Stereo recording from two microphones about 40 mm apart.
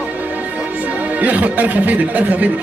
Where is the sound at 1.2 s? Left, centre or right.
Right.